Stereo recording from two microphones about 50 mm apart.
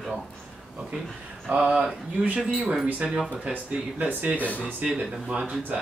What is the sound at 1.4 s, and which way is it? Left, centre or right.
Speech, right.